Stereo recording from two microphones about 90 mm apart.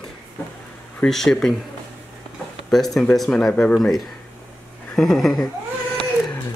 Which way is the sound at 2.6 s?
5° left (ahead or behind).